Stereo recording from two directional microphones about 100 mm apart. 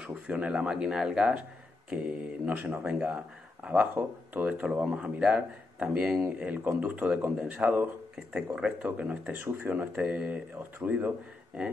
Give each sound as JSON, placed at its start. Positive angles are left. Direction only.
{"t": 0.1, "sound": "speech", "side_deg": -10}